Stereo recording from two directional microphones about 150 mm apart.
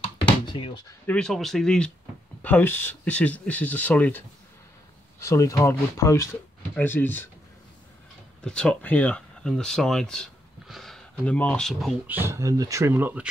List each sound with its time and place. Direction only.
0.0 s a sound: 35° left (ahead or behind)
1.0 s speech: 5° left (ahead or behind)
5.2 s speech: 20° left (ahead or behind)
8.5 s speech: 5° left (ahead or behind)
12.1 s speech: 15° right (ahead or behind)